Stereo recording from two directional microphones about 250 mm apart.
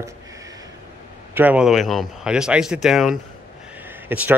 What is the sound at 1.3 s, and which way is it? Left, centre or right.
Speech, centre.